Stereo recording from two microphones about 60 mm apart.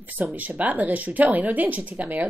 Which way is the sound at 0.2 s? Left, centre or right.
Right.